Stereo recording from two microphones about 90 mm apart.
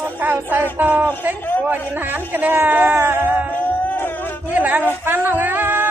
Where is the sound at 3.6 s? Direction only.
20° left (ahead or behind).